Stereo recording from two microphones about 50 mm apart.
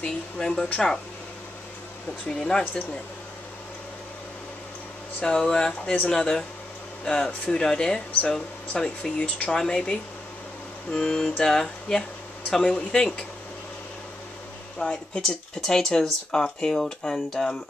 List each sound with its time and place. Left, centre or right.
0.0 s speech: centre
2.2 s speech: centre
5.2 s speech: centre
6.1 s speech: centre
14.8 s speech: centre